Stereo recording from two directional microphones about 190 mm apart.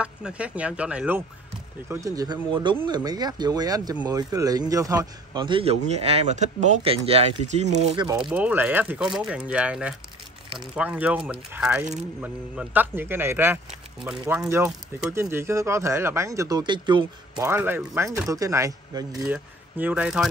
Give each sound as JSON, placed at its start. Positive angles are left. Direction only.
{"t": 0.0, "sound": "speech", "side_deg": -5}
{"t": 7.9, "sound": "speech", "side_deg": -25}
{"t": 8.3, "sound": "speech", "side_deg": -5}
{"t": 17.5, "sound": "speech", "side_deg": -10}